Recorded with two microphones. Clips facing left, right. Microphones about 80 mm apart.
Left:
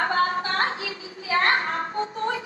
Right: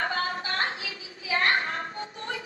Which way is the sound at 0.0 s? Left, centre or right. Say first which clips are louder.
Left 6 dB; left.